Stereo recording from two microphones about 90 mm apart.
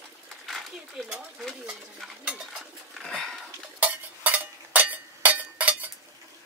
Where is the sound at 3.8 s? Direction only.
20° right (ahead or behind).